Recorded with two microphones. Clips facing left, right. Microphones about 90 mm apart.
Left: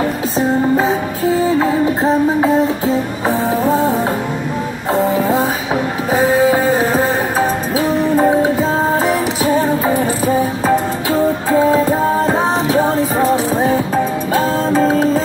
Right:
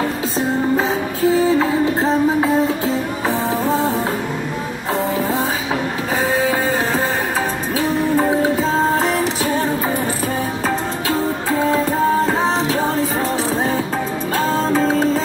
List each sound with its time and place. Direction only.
6.1 s music: 15° left (ahead or behind)
14.3 s music: 10° left (ahead or behind)